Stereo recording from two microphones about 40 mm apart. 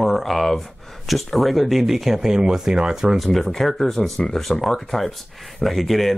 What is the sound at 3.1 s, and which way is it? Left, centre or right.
Speech, centre.